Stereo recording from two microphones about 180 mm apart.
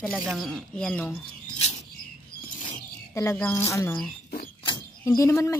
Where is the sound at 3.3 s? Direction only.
10° left (ahead or behind).